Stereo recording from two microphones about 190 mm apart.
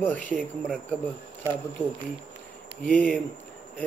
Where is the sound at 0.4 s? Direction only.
5° left (ahead or behind).